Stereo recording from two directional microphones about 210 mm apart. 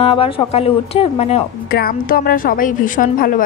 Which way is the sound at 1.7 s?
45° left (ahead or behind).